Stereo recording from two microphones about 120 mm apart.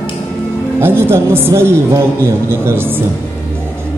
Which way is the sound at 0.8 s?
20° right (ahead or behind).